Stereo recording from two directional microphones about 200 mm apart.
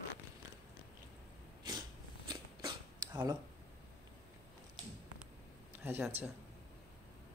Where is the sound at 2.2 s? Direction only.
20° right (ahead or behind).